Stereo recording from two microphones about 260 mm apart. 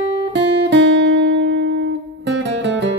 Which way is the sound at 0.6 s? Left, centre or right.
Right.